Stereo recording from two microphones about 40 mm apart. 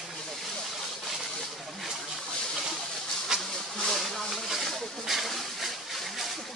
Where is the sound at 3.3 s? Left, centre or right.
Centre.